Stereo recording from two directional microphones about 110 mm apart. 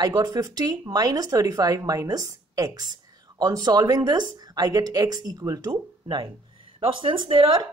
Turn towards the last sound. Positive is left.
turn(degrees=-50)  # may be behind; listen again after turning